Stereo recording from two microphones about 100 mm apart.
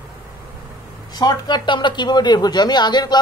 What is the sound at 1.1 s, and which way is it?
A man's voice, 45° left (ahead or behind).